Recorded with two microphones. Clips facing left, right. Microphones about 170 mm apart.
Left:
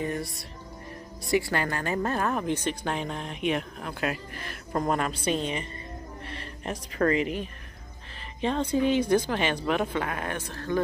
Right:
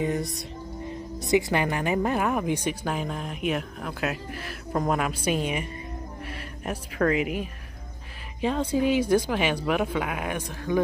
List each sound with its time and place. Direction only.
0.0 s speech: 20° right (ahead or behind)